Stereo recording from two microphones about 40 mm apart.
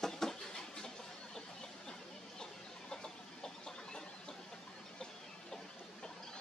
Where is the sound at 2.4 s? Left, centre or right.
Centre.